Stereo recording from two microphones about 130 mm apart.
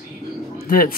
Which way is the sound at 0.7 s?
90° left.